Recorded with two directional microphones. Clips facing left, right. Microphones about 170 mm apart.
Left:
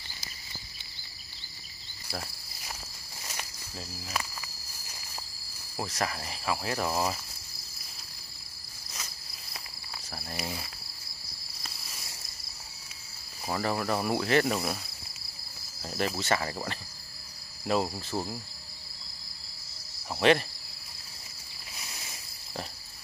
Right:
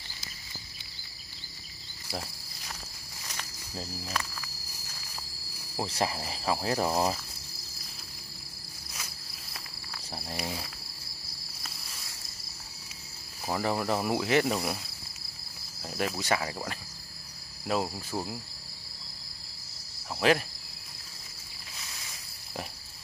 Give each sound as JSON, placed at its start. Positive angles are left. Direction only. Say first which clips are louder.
{"t": 4.1, "sound": "cricket", "louder": "left 1 dB", "side_deg": 10}
{"t": 5.8, "sound": "cricket", "louder": "right 2 dB", "side_deg": -25}
{"t": 8.9, "sound": "cricket", "louder": "left 1 dB", "side_deg": -5}
{"t": 13.5, "sound": "speech", "louder": "right 1 dB", "side_deg": -15}
{"t": 15.8, "sound": "cricket", "louder": "left 1 dB", "side_deg": 0}
{"t": 20.2, "sound": "cricket", "louder": "left 2 dB", "side_deg": -5}